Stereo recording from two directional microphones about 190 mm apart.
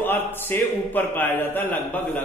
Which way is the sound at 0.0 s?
10° left (ahead or behind).